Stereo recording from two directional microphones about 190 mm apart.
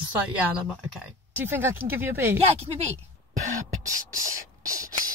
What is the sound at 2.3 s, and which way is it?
Speech, 30° right (ahead or behind).